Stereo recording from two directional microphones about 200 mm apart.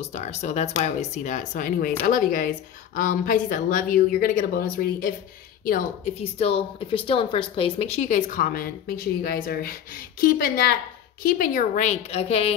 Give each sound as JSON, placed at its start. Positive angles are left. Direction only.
{"t": 0.0, "sound": "a woman's voice", "side_deg": 35}
{"t": 6.2, "sound": "a woman's voice", "side_deg": 30}